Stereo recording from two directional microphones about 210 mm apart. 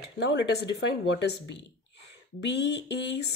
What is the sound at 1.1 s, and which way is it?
Speech, 55° left (ahead or behind).